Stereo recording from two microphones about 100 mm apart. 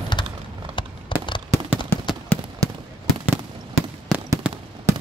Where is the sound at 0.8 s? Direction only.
55° left (ahead or behind).